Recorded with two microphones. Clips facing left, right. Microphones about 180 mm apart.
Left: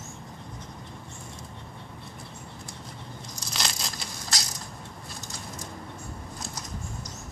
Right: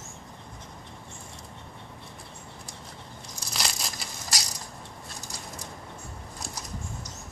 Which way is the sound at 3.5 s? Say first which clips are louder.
Even; 5° right (ahead or behind).